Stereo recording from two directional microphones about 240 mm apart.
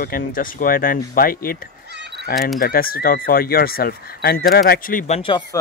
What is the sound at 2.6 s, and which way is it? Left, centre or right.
A man's voice, left.